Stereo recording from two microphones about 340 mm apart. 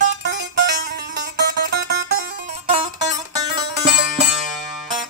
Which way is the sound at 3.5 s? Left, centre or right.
Centre.